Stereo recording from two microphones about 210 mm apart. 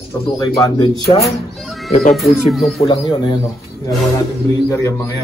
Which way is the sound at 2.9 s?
25° left (ahead or behind).